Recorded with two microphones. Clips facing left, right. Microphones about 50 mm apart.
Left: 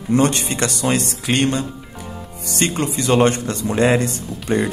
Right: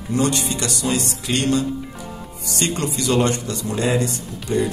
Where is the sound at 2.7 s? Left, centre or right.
Left.